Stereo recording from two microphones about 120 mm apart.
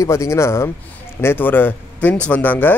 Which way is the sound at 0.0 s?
25° left (ahead or behind).